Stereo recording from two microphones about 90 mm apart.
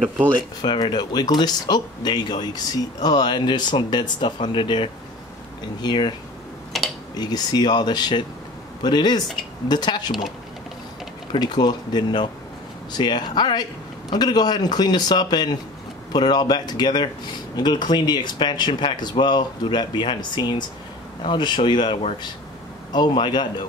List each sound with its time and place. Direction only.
0.6 s speech: 55° left (ahead or behind)
5.8 s speech: 55° left (ahead or behind)
6.7 s tick-tock: centre (ahead or behind)
7.2 s speech: 50° left (ahead or behind)
11.3 s speech: 50° left (ahead or behind)